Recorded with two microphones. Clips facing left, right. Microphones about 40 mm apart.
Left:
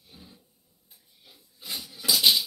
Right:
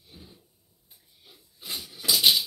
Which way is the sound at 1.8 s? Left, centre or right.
Right.